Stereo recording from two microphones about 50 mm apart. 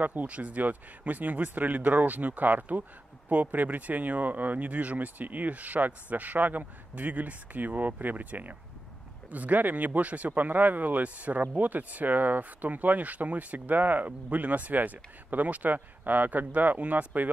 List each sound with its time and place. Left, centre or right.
0.0 s speech: right